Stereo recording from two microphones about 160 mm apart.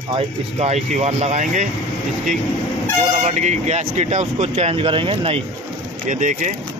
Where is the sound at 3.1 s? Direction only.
45° right (ahead or behind).